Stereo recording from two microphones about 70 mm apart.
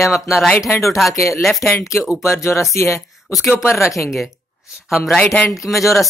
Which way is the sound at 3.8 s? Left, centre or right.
Left.